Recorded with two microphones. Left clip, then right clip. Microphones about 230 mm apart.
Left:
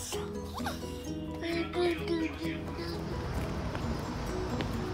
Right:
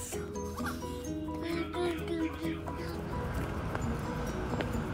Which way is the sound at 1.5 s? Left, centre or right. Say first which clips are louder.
Left 4 dB; centre.